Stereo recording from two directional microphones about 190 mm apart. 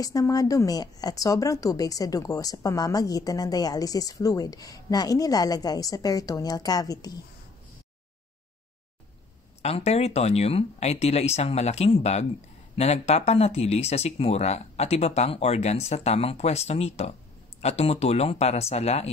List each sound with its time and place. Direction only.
0.0 s a woman's voice: 20° left (ahead or behind)
9.6 s speech: 35° left (ahead or behind)